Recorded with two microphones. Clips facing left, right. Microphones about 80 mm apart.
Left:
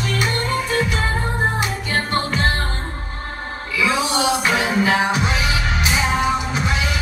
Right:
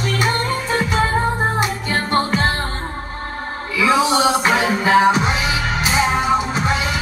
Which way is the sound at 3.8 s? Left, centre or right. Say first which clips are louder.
Right 4 dB; right.